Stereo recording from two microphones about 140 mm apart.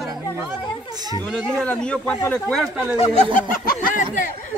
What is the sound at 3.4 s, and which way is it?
Speech, 85° left.